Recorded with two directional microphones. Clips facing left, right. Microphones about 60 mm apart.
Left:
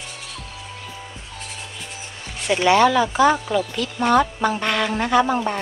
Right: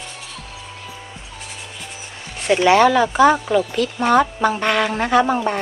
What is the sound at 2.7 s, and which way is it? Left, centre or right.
Speech, right.